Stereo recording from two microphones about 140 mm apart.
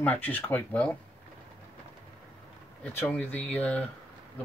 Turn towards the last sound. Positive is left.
turn(degrees=10)  # may be behind; listen again after turning